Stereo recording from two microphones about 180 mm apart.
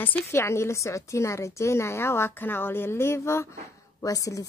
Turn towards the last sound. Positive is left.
turn(degrees=20)  # may be behind; listen again after turning